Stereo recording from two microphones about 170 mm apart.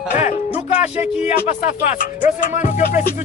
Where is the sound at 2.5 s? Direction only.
50° left (ahead or behind).